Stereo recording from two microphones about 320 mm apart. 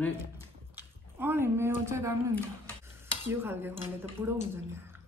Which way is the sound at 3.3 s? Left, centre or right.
Centre.